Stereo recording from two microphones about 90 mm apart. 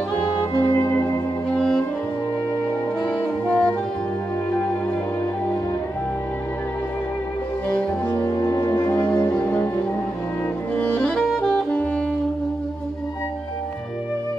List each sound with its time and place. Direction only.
0.1 s music: 15° left (ahead or behind)
1.6 s music: 10° left (ahead or behind)
3.4 s music: 10° left (ahead or behind)
7.7 s music: 15° left (ahead or behind)
8.5 s music: 40° left (ahead or behind)
8.8 s music: 15° left (ahead or behind)